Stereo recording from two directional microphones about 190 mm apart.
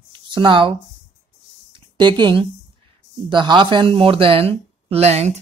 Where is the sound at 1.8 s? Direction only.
25° right (ahead or behind).